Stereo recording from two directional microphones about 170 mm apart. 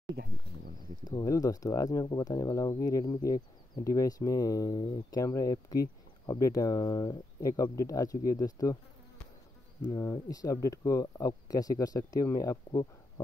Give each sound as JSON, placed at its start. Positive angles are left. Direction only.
{"t": 1.0, "sound": "speech", "side_deg": 20}
{"t": 9.8, "sound": "speech", "side_deg": 20}